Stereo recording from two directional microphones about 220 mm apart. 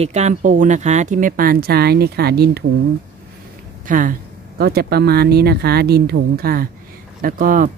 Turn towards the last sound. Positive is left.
turn(degrees=-40)  # may be behind; listen again after turning